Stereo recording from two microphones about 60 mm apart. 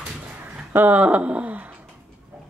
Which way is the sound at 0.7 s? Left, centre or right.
Right.